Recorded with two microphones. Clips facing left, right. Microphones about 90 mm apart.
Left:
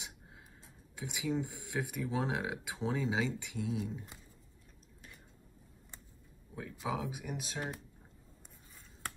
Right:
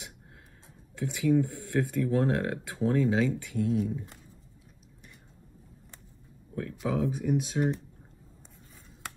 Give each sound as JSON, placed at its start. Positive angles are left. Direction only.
{"t": 0.9, "sound": "speech", "side_deg": 15}
{"t": 6.5, "sound": "speech", "side_deg": 10}